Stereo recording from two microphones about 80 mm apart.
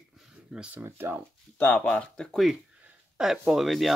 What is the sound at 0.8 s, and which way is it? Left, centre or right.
Speech, right.